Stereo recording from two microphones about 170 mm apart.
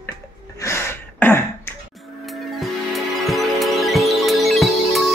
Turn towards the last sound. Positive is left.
turn(degrees=0)  # may be behind; listen again after turning